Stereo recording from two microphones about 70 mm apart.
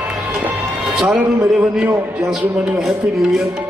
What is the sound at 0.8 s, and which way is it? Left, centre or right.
Music, centre.